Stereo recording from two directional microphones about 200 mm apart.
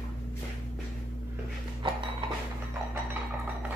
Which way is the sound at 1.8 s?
25° right (ahead or behind).